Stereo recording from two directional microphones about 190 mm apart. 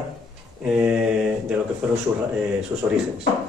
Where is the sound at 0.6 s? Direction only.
5° right (ahead or behind).